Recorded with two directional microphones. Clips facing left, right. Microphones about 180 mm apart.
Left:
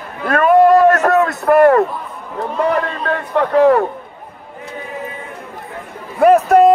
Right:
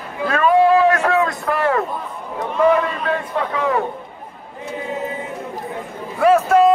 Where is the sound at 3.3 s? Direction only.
60° left (ahead or behind).